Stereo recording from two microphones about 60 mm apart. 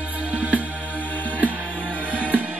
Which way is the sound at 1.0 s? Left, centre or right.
Left.